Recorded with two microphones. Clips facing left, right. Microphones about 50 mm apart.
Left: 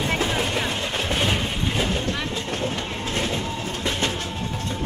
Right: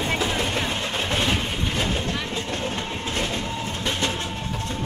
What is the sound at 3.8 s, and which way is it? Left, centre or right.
Train, left.